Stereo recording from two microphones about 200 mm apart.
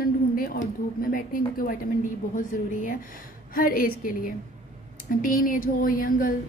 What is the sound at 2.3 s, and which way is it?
Speech, 40° left (ahead or behind).